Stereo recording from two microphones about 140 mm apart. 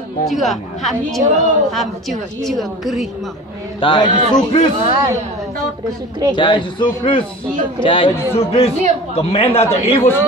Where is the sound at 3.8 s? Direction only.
35° left (ahead or behind).